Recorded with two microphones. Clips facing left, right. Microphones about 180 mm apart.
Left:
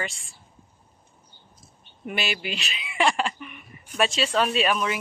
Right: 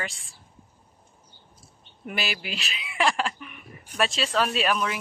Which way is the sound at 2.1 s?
Centre (ahead or behind).